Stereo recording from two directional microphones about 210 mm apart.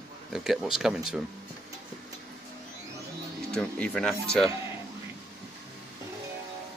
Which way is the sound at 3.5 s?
5° left (ahead or behind).